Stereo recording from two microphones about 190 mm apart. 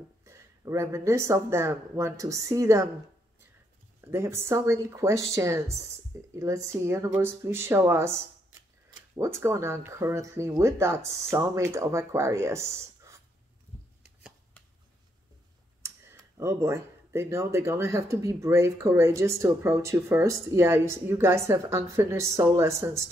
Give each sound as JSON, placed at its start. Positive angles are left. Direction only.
{"t": 0.2, "sound": "speech", "side_deg": -15}
{"t": 4.0, "sound": "speech", "side_deg": -15}
{"t": 9.1, "sound": "speech", "side_deg": -15}
{"t": 16.3, "sound": "speech", "side_deg": -15}